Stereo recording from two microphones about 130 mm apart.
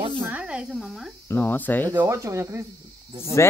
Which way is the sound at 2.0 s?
25° right (ahead or behind).